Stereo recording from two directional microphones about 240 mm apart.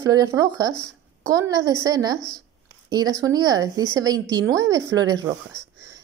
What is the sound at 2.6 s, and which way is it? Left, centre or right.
A woman's voice, centre.